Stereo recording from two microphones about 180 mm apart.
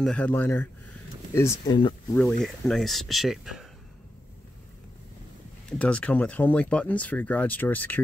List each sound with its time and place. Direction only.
0.0 s speech: 5° left (ahead or behind)
2.4 s speech: centre (ahead or behind)
5.7 s speech: 5° left (ahead or behind)